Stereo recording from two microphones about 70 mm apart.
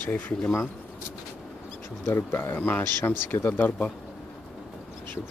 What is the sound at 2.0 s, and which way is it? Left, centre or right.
Speech, left.